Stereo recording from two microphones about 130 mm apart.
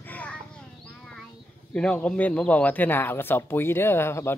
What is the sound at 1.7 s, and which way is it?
Speech, 10° left (ahead or behind).